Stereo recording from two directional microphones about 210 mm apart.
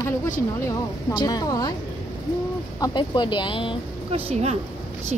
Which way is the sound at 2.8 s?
20° left (ahead or behind).